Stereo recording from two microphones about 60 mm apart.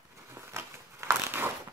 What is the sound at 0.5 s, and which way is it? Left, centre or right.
Crumpling, right.